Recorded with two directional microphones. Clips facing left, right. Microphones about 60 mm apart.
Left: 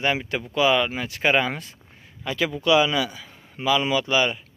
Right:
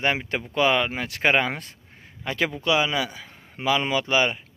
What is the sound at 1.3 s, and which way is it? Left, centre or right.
A man's voice, right.